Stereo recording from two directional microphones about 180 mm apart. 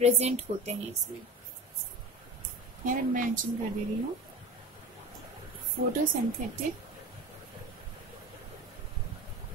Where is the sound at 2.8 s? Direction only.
50° right (ahead or behind).